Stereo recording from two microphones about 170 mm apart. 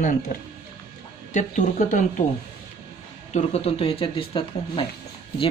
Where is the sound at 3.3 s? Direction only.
40° left (ahead or behind).